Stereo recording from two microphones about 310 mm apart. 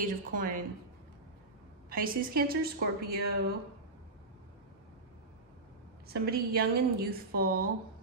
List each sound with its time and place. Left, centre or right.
0.0 s a woman's voice: right
1.9 s a woman's voice: right
6.0 s a woman's voice: right